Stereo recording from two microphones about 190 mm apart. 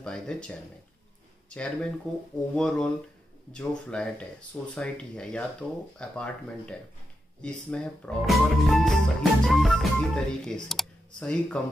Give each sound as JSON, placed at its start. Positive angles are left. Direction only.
{"t": 0.0, "sound": "speech", "side_deg": 5}